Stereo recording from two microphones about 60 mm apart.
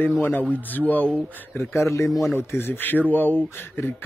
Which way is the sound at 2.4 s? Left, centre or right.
Left.